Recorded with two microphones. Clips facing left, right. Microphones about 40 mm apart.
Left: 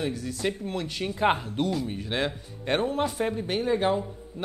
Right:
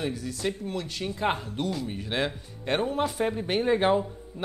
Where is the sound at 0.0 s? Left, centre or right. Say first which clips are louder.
Left 1 dB; centre.